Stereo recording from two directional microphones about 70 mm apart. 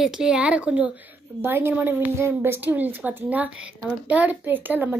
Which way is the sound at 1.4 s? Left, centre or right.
Right.